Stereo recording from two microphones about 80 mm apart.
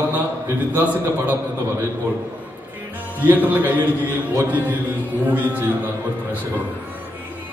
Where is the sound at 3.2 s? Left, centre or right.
Right.